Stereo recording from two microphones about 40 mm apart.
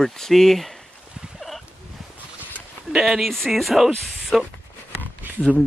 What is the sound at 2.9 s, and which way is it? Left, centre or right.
Speech, centre.